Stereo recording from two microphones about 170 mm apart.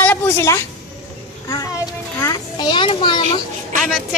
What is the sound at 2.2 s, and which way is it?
A child's voice, 25° left (ahead or behind).